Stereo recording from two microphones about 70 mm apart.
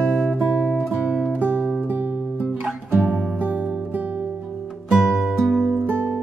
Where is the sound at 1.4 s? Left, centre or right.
Right.